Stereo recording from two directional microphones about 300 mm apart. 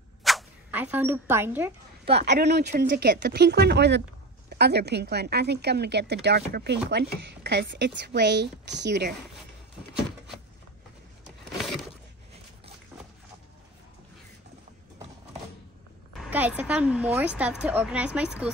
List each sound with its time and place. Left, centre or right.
0.2 s speech: centre
2.2 s a woman's voice: right
16.2 s a woman's voice: centre